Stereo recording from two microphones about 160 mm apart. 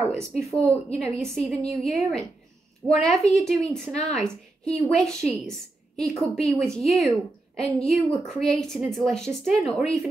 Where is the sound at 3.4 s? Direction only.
5° left (ahead or behind).